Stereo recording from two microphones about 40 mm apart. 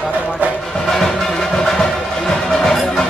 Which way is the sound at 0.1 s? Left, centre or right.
Right.